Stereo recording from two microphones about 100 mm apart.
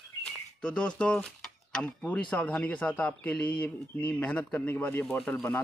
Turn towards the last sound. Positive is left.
turn(degrees=15)  # may be behind; listen again after turning